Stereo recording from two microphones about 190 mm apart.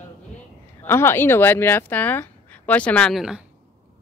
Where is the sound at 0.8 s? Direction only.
15° left (ahead or behind).